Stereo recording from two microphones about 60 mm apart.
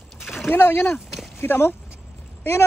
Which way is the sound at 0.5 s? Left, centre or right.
Left.